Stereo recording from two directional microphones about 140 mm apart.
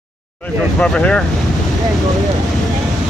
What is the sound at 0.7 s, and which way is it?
Speech, 5° left (ahead or behind).